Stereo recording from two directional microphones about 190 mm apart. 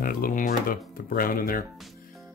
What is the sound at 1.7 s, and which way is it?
Music, centre (ahead or behind).